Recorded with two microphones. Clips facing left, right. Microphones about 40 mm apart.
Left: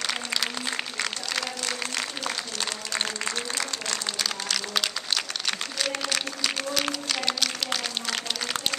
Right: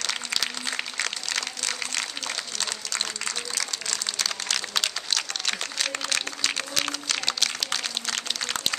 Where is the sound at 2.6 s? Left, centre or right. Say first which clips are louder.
Left 2 dB; centre.